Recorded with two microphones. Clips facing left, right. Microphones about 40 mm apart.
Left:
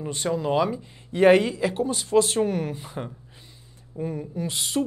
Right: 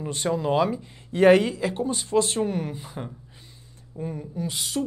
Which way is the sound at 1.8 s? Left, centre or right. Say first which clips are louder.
Left 3 dB; centre.